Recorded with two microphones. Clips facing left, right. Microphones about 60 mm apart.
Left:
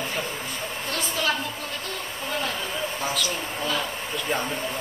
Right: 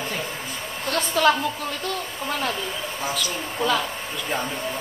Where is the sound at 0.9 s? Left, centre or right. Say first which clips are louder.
Right 8 dB; right.